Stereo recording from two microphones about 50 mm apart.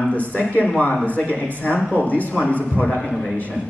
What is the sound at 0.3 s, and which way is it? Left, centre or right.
A man's voice, left.